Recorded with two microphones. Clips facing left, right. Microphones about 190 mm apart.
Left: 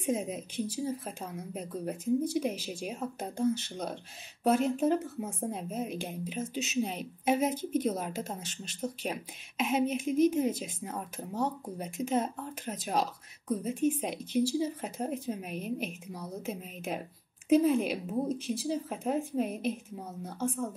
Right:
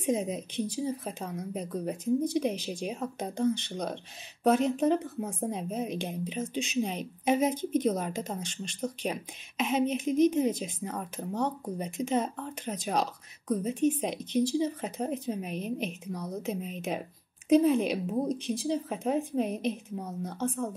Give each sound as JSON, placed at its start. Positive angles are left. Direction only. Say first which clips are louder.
{"t": 0.0, "sound": "a woman's voice", "louder": "right 3 dB", "side_deg": 5}